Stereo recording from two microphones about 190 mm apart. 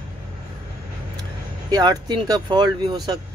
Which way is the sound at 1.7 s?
20° right (ahead or behind).